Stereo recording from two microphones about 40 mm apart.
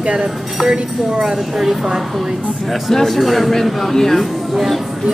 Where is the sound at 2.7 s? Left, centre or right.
Centre.